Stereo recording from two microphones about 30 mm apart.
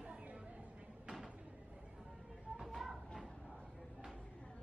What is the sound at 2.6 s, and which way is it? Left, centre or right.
Music, centre.